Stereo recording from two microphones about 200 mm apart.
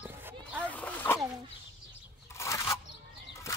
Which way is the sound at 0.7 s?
10° left (ahead or behind).